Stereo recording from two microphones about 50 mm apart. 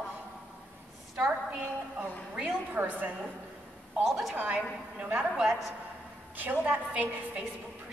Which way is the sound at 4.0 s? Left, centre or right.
Centre.